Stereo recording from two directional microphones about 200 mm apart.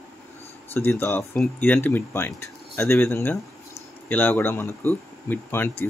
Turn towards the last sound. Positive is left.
turn(degrees=10)  # may be behind; listen again after turning